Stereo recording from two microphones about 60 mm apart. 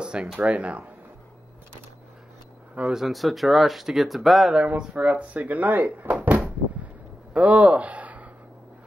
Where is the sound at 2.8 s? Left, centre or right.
Centre.